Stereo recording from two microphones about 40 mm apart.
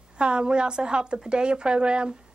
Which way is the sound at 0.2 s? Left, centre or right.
Right.